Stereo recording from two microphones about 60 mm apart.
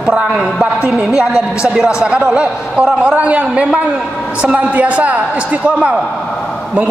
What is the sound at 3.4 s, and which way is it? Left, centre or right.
A woman's voice, centre.